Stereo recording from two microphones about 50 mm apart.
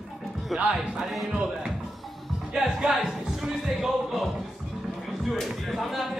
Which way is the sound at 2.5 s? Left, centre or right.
Centre.